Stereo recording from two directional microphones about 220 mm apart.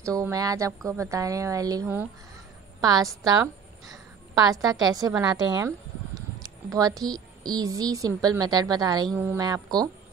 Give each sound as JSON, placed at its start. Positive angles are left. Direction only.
{"t": 0.0, "sound": "a woman's voice", "side_deg": -15}